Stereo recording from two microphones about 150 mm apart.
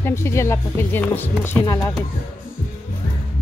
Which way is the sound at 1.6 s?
25° left (ahead or behind).